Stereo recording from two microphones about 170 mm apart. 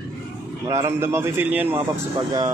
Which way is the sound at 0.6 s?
15° right (ahead or behind).